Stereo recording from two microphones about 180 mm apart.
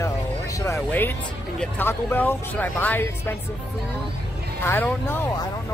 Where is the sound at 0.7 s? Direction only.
10° left (ahead or behind).